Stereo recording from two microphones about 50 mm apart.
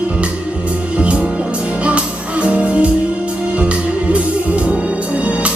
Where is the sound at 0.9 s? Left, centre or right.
Right.